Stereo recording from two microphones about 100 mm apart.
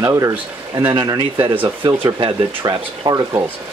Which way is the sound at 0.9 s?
50° right (ahead or behind).